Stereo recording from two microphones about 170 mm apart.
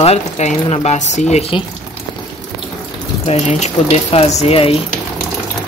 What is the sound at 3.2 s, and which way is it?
Speech, 40° left (ahead or behind).